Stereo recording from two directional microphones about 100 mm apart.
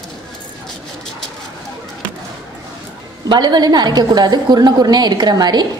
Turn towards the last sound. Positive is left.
turn(degrees=-45)  # may be behind; listen again after turning